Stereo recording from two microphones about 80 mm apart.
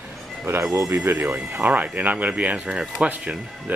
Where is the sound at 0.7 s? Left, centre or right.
Right; by 3.7 s centre.